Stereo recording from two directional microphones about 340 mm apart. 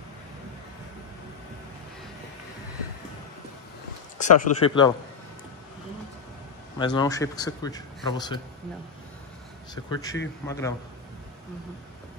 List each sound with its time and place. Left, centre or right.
4.2 s speech: centre
6.8 s speech: centre
9.8 s speech: centre